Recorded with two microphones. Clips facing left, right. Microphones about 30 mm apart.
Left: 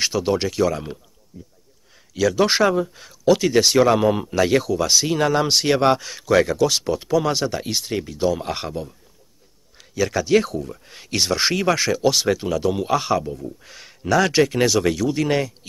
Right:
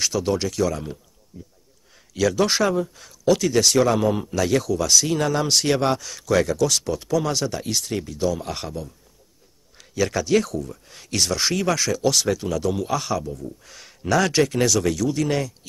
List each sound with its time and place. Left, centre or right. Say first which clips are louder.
0.0 s speech: left 2 dB; left
1.3 s speech: even; centre
2.4 s speech: left 3 dB; centre
9.8 s a sound: left 1 dB; centre
10.2 s speech: left 2 dB; centre